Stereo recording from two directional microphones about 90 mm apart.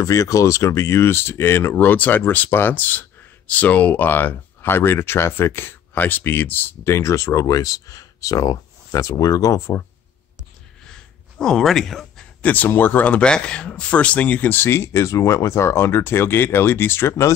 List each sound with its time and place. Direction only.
0.0 s speech: 35° left (ahead or behind)
10.9 s a sound: 5° left (ahead or behind)
12.4 s speech: 20° left (ahead or behind)